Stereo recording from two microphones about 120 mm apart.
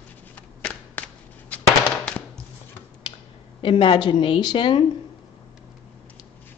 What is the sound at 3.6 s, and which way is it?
A woman's voice, 45° left (ahead or behind).